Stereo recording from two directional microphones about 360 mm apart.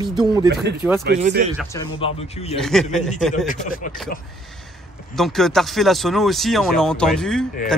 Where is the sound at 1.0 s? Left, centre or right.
Right.